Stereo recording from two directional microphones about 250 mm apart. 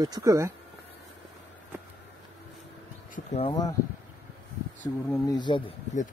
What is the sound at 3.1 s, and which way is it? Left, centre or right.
Speech, left.